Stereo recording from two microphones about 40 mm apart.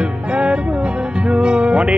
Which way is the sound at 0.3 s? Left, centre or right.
Right.